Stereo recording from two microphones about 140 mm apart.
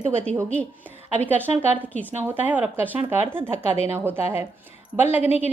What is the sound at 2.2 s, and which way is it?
Speech, 15° right (ahead or behind).